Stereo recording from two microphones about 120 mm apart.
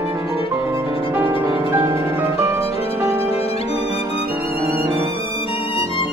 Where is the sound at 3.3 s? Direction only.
55° left (ahead or behind).